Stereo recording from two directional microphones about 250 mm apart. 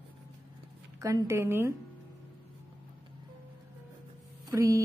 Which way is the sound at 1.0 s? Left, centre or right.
Centre.